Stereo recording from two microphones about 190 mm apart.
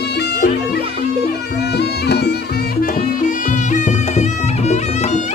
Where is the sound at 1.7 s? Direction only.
60° left (ahead or behind).